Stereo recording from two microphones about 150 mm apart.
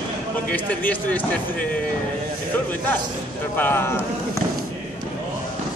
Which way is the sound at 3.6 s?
15° left (ahead or behind).